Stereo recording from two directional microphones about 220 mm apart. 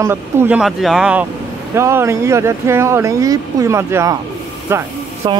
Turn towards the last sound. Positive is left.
turn(degrees=-10)  # may be behind; listen again after turning